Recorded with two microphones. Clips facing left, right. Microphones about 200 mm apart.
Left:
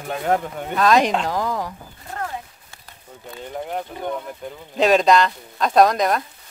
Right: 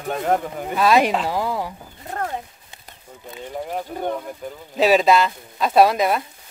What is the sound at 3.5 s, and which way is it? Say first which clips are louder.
Speech: right 1 dB; centre (ahead or behind).